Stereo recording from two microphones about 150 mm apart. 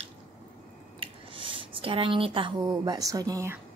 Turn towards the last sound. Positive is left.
turn(degrees=-20)  # may be behind; listen again after turning